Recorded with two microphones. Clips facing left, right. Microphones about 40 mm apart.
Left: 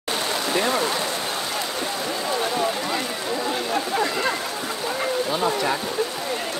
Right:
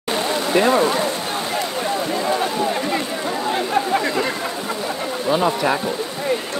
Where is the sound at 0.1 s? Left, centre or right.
Right.